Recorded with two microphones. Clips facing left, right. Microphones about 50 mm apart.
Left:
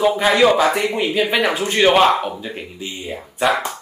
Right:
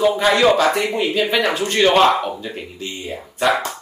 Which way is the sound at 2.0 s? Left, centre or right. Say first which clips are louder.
Even; centre.